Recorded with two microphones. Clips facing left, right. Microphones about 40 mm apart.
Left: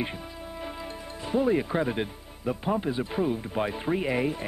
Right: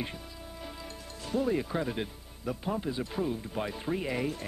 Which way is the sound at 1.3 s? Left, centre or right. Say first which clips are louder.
Left 5 dB; left.